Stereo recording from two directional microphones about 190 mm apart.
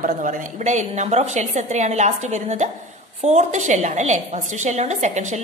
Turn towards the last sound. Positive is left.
turn(degrees=-40)  # may be behind; listen again after turning